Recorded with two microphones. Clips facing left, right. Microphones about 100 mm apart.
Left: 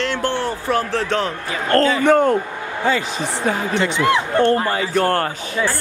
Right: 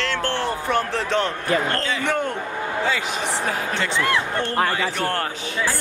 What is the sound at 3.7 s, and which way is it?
Speech, 20° left (ahead or behind).